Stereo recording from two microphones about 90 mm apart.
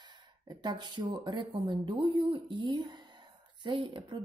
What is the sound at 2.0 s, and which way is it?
Speech, 70° right (ahead or behind).